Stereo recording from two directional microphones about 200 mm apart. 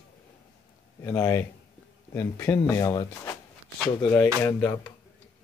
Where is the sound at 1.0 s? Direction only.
10° left (ahead or behind).